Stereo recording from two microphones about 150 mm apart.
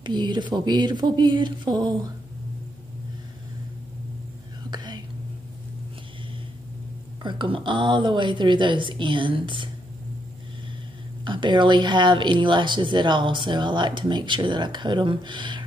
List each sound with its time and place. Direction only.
0.0 s speech: 30° right (ahead or behind)
4.6 s whispering: 30° right (ahead or behind)
7.2 s speech: 35° right (ahead or behind)
11.2 s speech: 30° right (ahead or behind)